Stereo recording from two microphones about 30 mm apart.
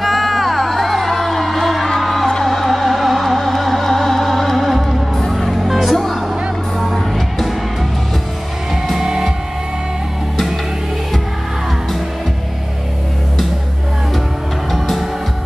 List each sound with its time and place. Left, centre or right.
0.0 s music: centre
9.0 s music: right
14.7 s music: centre